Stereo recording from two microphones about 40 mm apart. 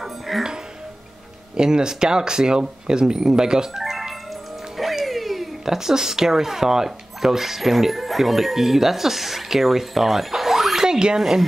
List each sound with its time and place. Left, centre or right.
1.6 s speech: centre
4.7 s a sound: centre
5.8 s speech: centre
11.1 s speech: centre